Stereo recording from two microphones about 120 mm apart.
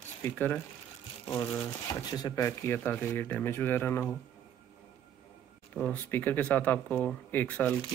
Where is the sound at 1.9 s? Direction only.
35° left (ahead or behind); by 4.1 s 20° left (ahead or behind).